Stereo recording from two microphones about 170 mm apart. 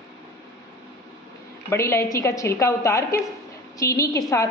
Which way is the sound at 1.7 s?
15° left (ahead or behind).